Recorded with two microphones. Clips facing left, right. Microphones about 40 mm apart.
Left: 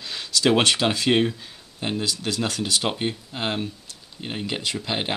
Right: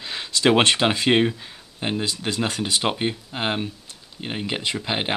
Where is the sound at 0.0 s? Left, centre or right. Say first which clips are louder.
Right 2 dB; right.